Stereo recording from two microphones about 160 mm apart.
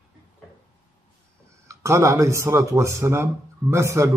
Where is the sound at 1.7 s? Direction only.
20° right (ahead or behind).